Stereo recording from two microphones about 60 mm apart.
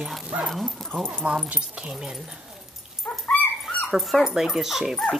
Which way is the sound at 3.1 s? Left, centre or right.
Left.